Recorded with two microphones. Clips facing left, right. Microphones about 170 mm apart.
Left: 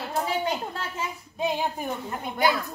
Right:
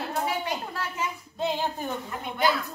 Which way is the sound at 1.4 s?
15° left (ahead or behind).